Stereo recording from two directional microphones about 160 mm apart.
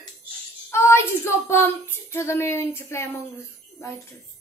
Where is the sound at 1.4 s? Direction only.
15° left (ahead or behind).